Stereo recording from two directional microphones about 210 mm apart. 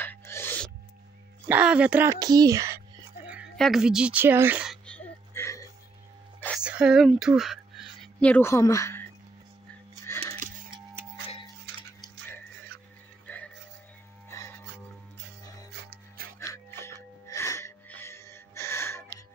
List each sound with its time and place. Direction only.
0.0 s music: 10° left (ahead or behind)
1.5 s speech: 5° right (ahead or behind)
3.3 s speech: centre (ahead or behind)
4.8 s music: 5° left (ahead or behind)
6.6 s speech: 5° right (ahead or behind); by 9.0 s 15° left (ahead or behind)
10.2 s music: 25° right (ahead or behind)
13.3 s music: 10° left (ahead or behind)
15.7 s music: 50° right (ahead or behind)
16.3 s music: 15° left (ahead or behind)